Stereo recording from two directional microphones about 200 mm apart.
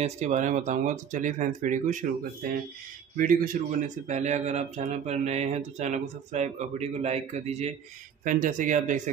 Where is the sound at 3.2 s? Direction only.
45° right (ahead or behind).